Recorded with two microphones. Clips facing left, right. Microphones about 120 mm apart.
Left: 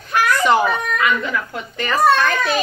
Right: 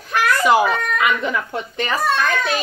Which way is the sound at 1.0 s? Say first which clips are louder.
Even; 20° right (ahead or behind).